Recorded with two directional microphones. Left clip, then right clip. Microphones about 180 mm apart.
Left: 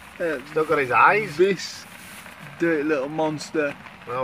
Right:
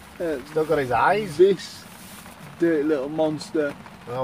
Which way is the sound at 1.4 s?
25° left (ahead or behind).